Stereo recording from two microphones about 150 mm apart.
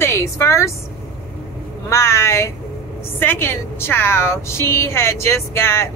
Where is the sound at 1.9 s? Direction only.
20° left (ahead or behind).